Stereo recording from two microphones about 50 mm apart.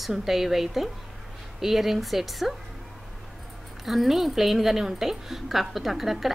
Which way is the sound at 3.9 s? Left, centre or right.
Centre.